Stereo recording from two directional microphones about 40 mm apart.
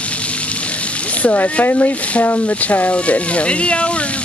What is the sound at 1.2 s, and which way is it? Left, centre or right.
Speech, left.